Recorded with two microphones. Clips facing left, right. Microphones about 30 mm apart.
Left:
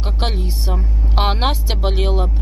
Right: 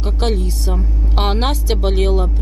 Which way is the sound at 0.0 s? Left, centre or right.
Centre.